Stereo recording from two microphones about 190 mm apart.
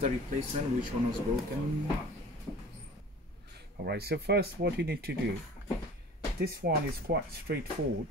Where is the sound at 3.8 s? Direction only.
60° right (ahead or behind).